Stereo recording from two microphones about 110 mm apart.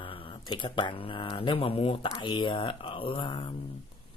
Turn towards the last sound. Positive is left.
turn(degrees=45)  # may be behind; listen again after turning